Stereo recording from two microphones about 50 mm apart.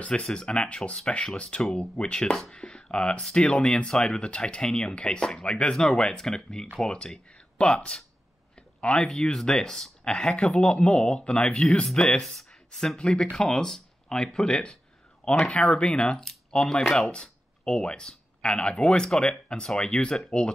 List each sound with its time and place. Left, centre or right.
0.0 s speech: centre
2.5 s a sound: centre
3.2 s speech: centre
3.4 s speech: left
8.5 s a sound: left
9.0 s speech: centre
10.0 s speech: centre
12.9 s speech: centre